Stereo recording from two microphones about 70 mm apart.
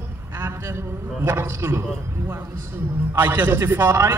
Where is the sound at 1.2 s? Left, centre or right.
Right.